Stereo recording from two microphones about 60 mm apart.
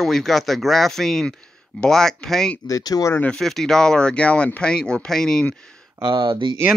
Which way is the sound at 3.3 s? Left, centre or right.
Centre.